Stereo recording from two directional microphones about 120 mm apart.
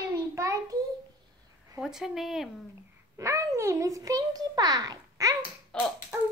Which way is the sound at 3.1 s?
25° right (ahead or behind).